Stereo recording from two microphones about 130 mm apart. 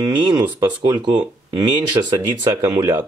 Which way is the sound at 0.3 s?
40° right (ahead or behind).